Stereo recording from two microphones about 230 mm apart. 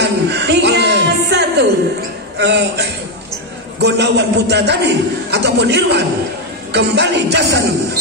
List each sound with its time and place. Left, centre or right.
0.0 s music: right
2.3 s a man's voice: right